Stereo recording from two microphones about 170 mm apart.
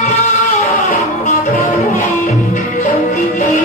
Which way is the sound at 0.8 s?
50° left (ahead or behind).